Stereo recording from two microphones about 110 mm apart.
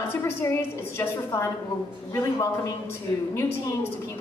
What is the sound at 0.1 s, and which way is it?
A woman's voice, 25° left (ahead or behind).